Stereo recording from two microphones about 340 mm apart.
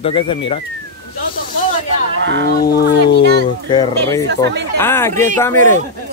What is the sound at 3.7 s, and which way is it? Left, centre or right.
Speech, centre.